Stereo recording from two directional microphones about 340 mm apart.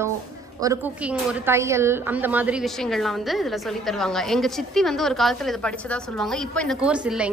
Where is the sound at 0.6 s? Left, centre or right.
Centre.